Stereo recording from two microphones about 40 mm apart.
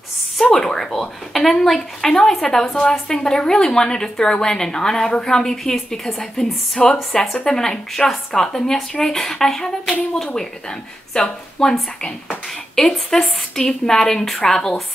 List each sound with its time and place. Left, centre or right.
0.4 s a woman's voice: centre
7.2 s speech: left
7.5 s a woman's voice: centre
12.8 s a woman's voice: centre